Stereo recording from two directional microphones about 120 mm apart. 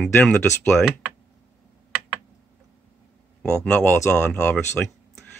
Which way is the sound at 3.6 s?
15° left (ahead or behind).